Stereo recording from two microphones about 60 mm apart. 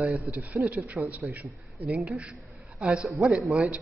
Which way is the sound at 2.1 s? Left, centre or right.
Centre.